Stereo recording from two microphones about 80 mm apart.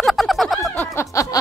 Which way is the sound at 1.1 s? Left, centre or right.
Left.